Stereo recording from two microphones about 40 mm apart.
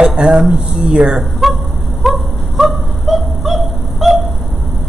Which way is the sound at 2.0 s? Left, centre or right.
Centre.